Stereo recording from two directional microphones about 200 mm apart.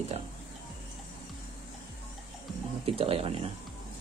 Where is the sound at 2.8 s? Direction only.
30° right (ahead or behind).